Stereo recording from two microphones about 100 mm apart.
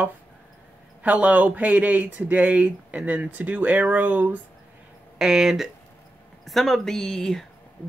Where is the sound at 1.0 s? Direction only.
15° right (ahead or behind).